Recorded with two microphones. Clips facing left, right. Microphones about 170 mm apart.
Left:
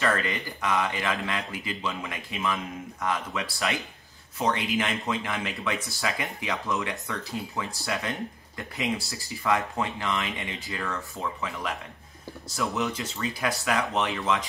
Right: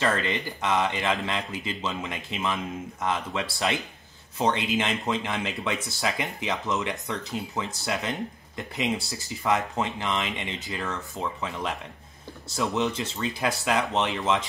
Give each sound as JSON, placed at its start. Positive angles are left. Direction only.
{"t": 0.0, "sound": "speech", "side_deg": -25}
{"t": 12.5, "sound": "speech", "side_deg": -20}